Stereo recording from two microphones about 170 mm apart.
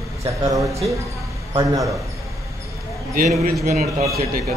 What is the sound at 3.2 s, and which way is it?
A man's voice, 60° right (ahead or behind).